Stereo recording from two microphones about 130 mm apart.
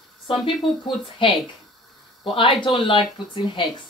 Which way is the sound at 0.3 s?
40° left (ahead or behind).